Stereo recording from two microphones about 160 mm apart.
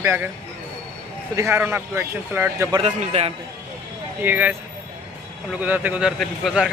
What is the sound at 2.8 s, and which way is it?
Speech, 45° right (ahead or behind).